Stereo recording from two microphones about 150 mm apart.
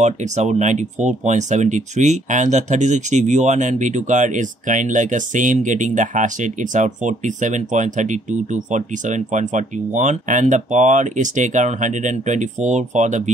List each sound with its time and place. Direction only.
0.0 s speech: 50° right (ahead or behind)